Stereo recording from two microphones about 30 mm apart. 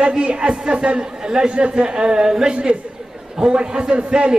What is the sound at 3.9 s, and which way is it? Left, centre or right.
Speech, right.